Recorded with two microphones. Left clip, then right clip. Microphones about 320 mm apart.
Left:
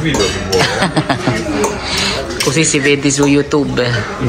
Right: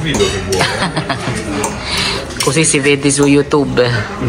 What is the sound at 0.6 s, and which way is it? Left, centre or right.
Speech, centre.